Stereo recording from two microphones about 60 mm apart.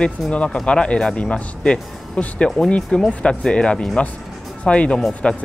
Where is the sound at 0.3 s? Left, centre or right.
Centre.